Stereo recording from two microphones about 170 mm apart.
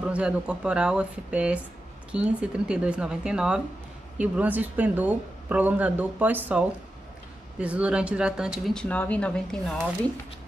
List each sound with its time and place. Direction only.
0.1 s speech: 5° right (ahead or behind)